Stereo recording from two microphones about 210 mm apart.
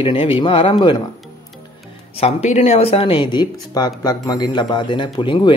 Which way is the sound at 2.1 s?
30° left (ahead or behind).